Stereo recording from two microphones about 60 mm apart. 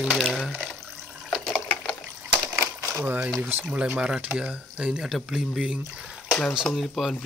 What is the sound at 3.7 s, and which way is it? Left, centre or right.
Speech, centre.